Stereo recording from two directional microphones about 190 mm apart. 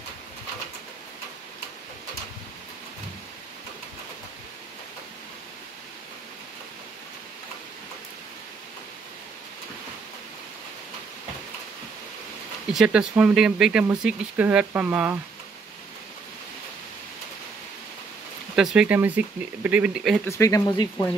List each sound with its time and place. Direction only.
12.7 s speech: 5° right (ahead or behind)
18.6 s speech: 5° right (ahead or behind)
20.2 s speech: 15° left (ahead or behind)